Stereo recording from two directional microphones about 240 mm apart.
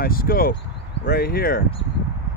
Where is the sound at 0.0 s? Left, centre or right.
Left.